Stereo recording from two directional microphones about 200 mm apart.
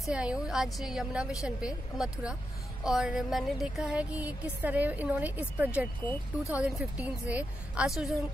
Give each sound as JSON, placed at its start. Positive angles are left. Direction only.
{"t": 0.0, "sound": "speech", "side_deg": -5}